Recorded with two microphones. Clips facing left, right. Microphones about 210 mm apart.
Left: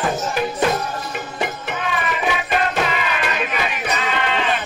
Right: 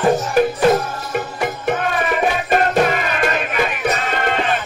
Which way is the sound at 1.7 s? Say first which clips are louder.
Right 5 dB; 45° right (ahead or behind).